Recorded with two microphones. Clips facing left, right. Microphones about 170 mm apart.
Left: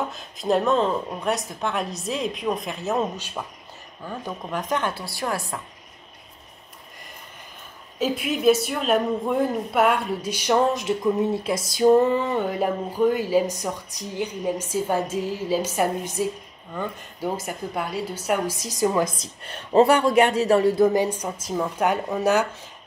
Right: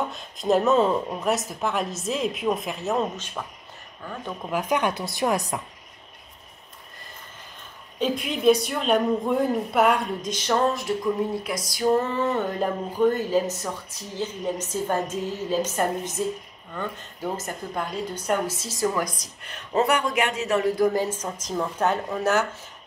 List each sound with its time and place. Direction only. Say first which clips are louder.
0.1 s a woman's voice: right 1 dB; centre (ahead or behind)
4.5 s speech: right 2 dB; 10° right (ahead or behind)
8.0 s a woman's voice: left 1 dB; 5° left (ahead or behind)